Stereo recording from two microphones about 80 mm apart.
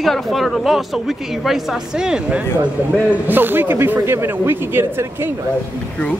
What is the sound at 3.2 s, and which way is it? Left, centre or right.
Speech, right.